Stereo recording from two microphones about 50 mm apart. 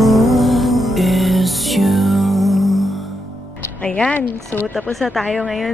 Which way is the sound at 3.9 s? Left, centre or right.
Centre.